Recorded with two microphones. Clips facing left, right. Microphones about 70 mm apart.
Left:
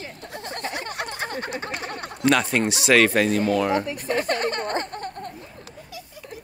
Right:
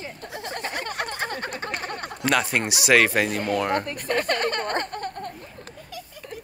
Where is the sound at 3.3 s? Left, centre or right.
Right.